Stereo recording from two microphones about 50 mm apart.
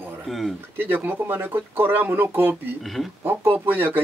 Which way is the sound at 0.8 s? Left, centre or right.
Right.